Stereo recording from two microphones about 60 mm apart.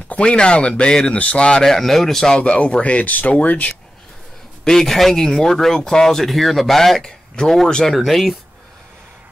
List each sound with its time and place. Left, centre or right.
0.1 s speech: centre
4.6 s speech: centre